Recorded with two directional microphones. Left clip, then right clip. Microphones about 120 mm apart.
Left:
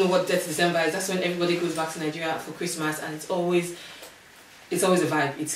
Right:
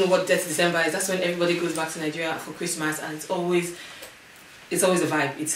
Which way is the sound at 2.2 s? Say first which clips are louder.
Even; 10° right (ahead or behind).